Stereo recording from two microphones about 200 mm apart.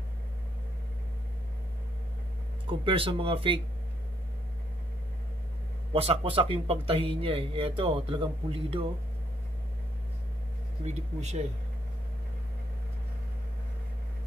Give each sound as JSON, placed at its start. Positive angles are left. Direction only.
{"t": 2.6, "sound": "speech", "side_deg": -25}
{"t": 5.9, "sound": "speech", "side_deg": -30}
{"t": 10.9, "sound": "speech", "side_deg": -35}